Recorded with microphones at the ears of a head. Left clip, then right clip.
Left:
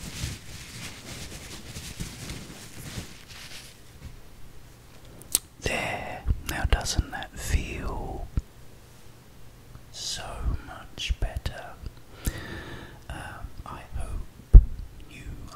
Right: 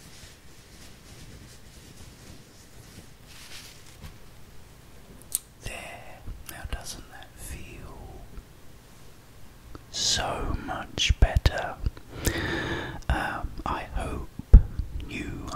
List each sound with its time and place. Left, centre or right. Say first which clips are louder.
0.0 s a sound: left 10 dB; left
5.3 s whispering: left 9 dB; left
9.7 s whispering: right 8 dB; right